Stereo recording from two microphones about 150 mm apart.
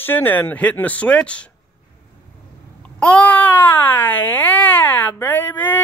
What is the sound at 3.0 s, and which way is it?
Speech, 5° left (ahead or behind).